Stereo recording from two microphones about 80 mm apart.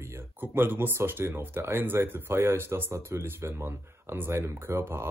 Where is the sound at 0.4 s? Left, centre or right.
Right.